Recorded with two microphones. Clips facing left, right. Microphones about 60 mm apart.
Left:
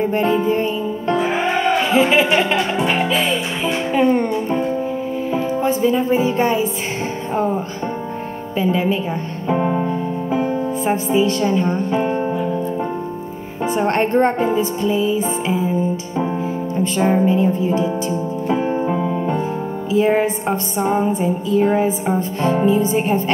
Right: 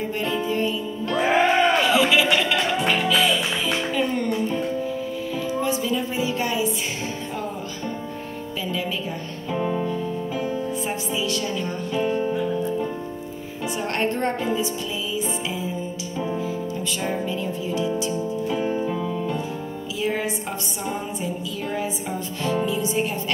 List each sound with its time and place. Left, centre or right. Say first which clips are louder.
0.0 s music: left 8 dB; left
8.5 s music: left 10 dB; left
13.7 s music: left 7 dB; left